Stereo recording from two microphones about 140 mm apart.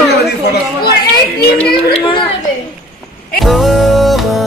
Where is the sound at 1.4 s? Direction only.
10° left (ahead or behind).